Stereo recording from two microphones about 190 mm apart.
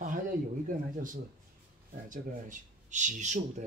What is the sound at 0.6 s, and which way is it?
Speech, 45° right (ahead or behind).